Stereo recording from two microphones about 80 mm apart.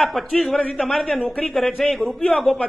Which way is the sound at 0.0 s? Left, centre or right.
Centre.